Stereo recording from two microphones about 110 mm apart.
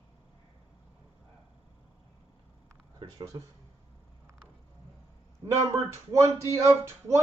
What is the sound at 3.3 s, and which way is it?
Speech, 35° right (ahead or behind).